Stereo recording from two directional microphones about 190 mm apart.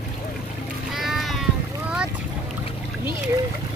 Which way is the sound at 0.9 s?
Centre (ahead or behind).